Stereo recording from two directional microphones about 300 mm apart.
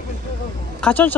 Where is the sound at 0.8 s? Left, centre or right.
Centre.